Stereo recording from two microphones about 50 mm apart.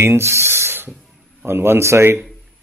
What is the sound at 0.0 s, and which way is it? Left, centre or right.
A man's voice, right.